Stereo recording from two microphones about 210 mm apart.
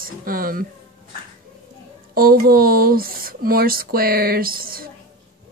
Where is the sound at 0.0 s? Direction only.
45° right (ahead or behind).